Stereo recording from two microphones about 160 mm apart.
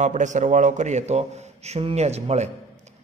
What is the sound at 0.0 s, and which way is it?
A man's voice, 50° right (ahead or behind).